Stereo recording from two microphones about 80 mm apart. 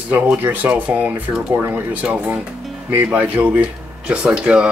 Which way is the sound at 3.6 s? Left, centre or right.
Centre.